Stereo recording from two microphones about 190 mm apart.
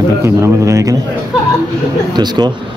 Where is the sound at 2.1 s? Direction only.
20° right (ahead or behind).